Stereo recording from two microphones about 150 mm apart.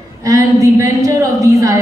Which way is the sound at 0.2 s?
20° right (ahead or behind).